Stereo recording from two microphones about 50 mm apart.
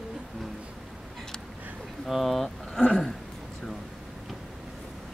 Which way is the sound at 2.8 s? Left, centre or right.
Centre.